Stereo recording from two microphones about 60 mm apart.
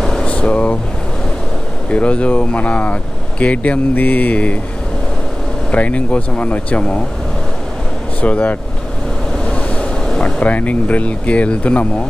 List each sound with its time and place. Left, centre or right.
0.0 s air conditioning: centre
1.9 s speech: left
5.7 s speech: left
8.2 s speech: left
9.4 s vehicle: centre
10.4 s speech: left